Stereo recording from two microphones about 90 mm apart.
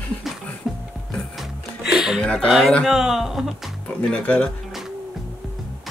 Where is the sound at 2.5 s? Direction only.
Centre (ahead or behind).